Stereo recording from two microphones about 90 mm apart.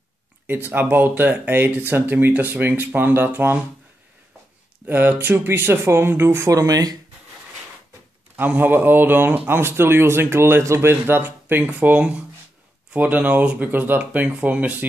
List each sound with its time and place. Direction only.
0.7 s a man's voice: 20° right (ahead or behind)
4.8 s a man's voice: 20° right (ahead or behind)
6.5 s speech: 40° right (ahead or behind)
8.4 s a man's voice: 20° right (ahead or behind)